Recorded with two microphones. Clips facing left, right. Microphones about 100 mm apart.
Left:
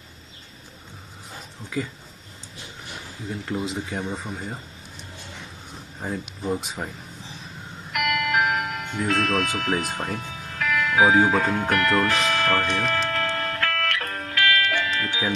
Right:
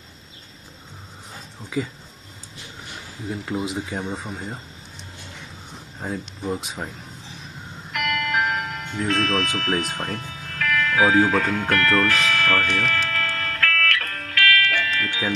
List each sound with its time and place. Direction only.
1.6 s speech: 20° right (ahead or behind)
3.3 s speech: 5° right (ahead or behind)
5.9 s speech: centre (ahead or behind)
7.9 s music: 5° left (ahead or behind)
11.7 s speech: 15° left (ahead or behind)
13.1 s music: 20° left (ahead or behind)